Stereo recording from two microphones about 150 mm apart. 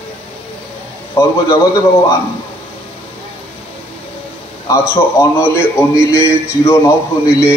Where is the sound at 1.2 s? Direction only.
20° left (ahead or behind).